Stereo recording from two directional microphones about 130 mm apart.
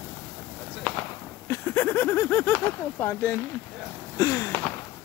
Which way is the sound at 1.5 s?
20° left (ahead or behind).